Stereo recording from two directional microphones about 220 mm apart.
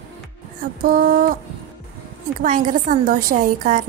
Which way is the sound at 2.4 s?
35° right (ahead or behind).